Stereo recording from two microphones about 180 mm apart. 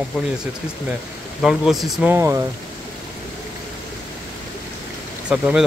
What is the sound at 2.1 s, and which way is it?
Speech, 15° right (ahead or behind).